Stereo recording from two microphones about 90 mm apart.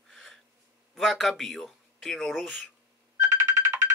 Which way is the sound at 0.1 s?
5° left (ahead or behind).